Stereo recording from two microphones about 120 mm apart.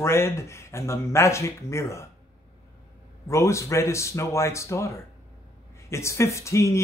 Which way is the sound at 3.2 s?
25° left (ahead or behind).